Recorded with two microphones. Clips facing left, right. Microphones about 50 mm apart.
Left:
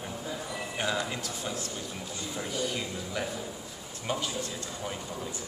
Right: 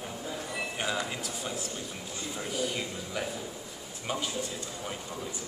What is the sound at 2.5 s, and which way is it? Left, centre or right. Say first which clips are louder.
Speech: right 1 dB; centre.